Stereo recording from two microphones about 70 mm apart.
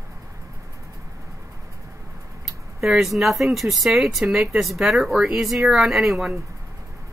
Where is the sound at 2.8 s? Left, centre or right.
Centre.